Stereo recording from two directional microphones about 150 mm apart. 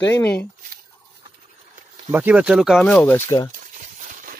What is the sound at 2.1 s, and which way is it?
Speech, 10° right (ahead or behind).